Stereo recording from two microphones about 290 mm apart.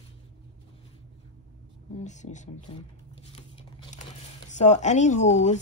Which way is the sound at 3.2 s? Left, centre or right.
Centre.